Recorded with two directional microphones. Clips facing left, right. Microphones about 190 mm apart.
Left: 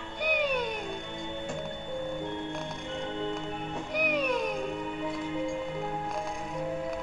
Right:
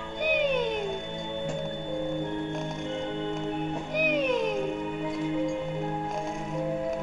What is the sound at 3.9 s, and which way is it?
Music, 20° right (ahead or behind).